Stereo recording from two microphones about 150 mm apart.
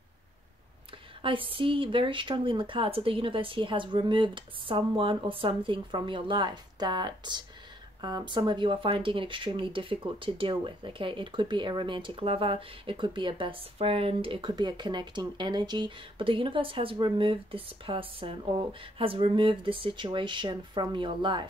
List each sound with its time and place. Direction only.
1.2 s speech: 35° right (ahead or behind)